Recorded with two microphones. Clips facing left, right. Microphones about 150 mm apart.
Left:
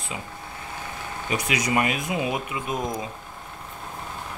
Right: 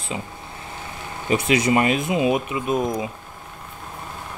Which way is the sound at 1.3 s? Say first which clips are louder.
Right 7 dB; 30° right (ahead or behind).